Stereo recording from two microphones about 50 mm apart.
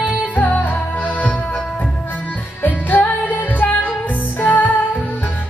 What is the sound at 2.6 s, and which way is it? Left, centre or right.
Music, left.